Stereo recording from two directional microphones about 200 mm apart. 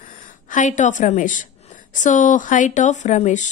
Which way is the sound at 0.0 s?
40° left (ahead or behind).